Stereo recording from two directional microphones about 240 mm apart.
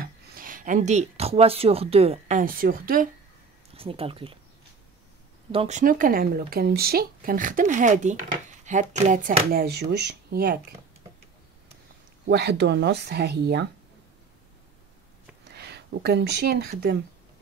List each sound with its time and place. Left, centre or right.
0.0 s speech: right
3.7 s speech: right
5.5 s speech: right
12.3 s speech: right
15.4 s speech: right